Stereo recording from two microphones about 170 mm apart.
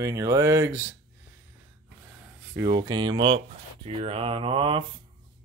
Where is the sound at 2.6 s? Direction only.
25° right (ahead or behind).